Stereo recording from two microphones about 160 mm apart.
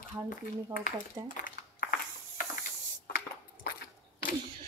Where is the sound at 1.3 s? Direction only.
65° left (ahead or behind).